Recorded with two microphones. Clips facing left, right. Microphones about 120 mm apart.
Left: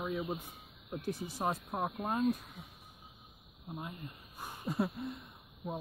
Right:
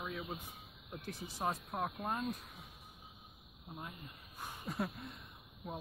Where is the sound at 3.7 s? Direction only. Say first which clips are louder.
Left 5 dB; centre (ahead or behind).